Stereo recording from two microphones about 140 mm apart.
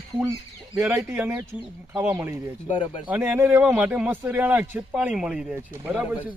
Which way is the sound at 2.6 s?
40° left (ahead or behind).